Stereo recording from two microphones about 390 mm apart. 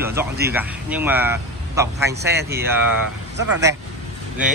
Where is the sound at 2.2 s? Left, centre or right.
Right.